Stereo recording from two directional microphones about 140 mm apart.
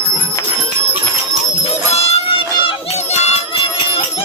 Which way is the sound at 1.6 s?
45° left (ahead or behind).